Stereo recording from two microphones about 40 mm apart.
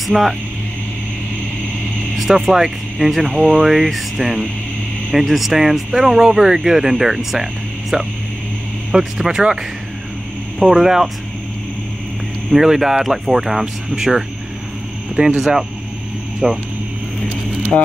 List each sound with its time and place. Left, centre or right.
0.1 s speech: centre
2.1 s speech: centre
7.9 s speech: right
8.9 s speech: centre
10.6 s speech: centre
12.4 s speech: centre